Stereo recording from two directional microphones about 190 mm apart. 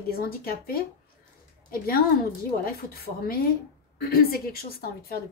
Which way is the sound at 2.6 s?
50° left (ahead or behind).